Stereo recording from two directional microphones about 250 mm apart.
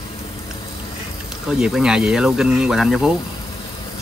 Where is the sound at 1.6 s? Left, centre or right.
Centre.